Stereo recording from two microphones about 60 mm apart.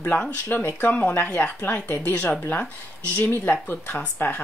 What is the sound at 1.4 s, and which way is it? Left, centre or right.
Speech, left.